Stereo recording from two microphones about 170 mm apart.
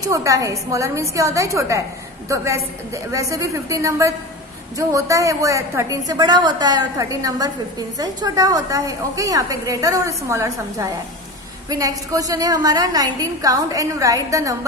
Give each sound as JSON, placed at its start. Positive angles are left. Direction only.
{"t": 0.0, "sound": "a woman's voice", "side_deg": -20}